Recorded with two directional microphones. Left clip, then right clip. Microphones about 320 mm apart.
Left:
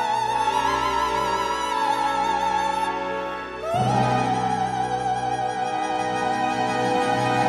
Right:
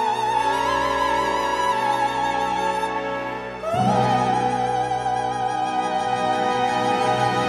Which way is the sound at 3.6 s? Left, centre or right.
Centre.